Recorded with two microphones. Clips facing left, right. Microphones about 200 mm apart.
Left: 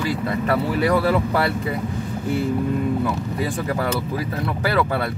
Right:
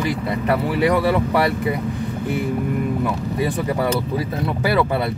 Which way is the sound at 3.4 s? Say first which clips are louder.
Right 3 dB; 20° right (ahead or behind).